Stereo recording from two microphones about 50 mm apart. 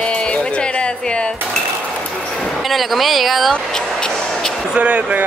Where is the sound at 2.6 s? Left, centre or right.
Centre.